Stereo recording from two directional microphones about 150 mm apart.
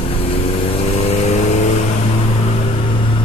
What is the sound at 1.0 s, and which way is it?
Vehicle, 45° left (ahead or behind).